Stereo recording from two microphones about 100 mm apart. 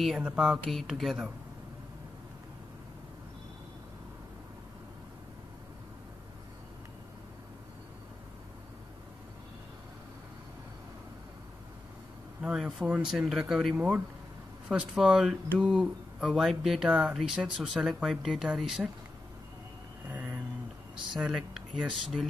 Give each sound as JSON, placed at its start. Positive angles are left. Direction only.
{"t": 0.4, "sound": "speech", "side_deg": 0}
{"t": 12.4, "sound": "speech", "side_deg": -10}
{"t": 20.1, "sound": "vehicle", "side_deg": -15}
{"t": 21.1, "sound": "speech", "side_deg": -5}